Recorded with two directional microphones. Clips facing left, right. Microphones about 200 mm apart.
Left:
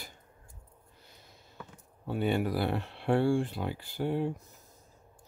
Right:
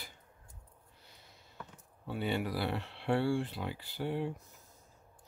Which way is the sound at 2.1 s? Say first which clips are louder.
Left 5 dB; 50° left (ahead or behind).